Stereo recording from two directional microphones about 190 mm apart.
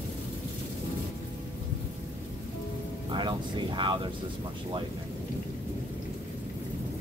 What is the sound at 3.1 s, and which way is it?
Speech, 25° right (ahead or behind).